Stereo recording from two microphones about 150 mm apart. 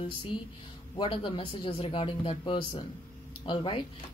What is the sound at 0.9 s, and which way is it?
A woman's voice, 35° left (ahead or behind).